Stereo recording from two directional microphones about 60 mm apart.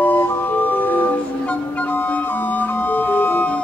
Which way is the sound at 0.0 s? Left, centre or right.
Left.